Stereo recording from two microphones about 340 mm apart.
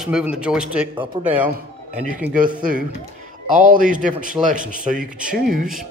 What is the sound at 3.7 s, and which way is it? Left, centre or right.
Speech, right.